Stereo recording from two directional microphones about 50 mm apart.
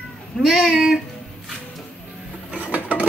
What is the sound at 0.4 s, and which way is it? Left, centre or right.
Speech, centre.